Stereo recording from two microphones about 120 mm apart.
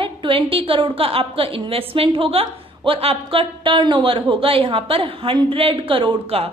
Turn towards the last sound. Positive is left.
turn(degrees=-50)  # may be behind; listen again after turning